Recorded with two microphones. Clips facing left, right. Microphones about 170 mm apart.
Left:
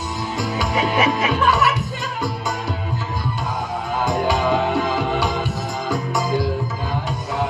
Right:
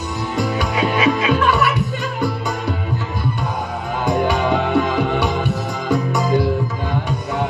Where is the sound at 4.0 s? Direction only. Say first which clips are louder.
Right 2 dB; 60° right (ahead or behind).